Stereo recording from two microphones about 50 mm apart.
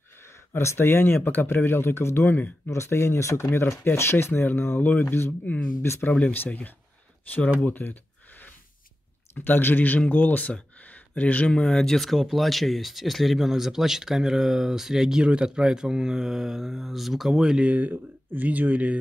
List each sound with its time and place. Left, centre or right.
0.6 s speech: left
2.3 s speech: left
2.7 s speech: left
3.4 s speech: left
6.3 s speech: left
7.6 s a sound: left
9.3 s speech: left; by 11.9 s centre
11.9 s speech: centre
17.6 s speech: right